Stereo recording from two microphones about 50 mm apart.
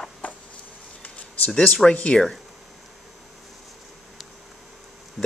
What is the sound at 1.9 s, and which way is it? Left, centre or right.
Speech, left.